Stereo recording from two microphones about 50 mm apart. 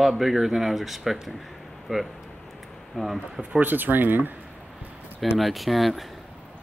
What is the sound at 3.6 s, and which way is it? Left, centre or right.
Speech, right.